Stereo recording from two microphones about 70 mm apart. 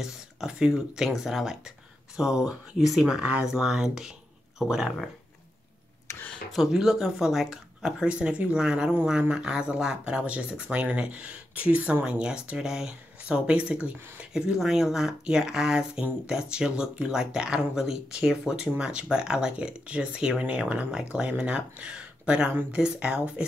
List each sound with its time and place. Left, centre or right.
0.0 s speech: centre
6.7 s speech: centre
22.5 s speech: right
22.8 s speech: centre